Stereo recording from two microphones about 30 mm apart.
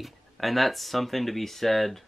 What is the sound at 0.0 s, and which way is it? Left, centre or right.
Speech, centre.